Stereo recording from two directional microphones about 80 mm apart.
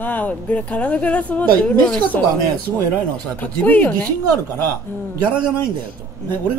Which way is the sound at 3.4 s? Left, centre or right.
Left.